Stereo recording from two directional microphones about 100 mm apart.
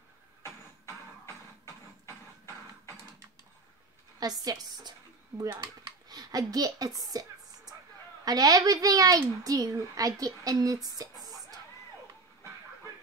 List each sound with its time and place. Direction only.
0.4 s music: 25° left (ahead or behind)
4.2 s a woman's voice: 40° right (ahead or behind)
5.6 s a sound: 40° right (ahead or behind)
8.3 s a woman's voice: 40° right (ahead or behind)